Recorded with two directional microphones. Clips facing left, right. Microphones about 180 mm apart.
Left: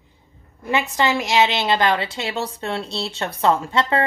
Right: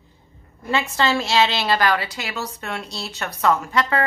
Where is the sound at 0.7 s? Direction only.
15° left (ahead or behind).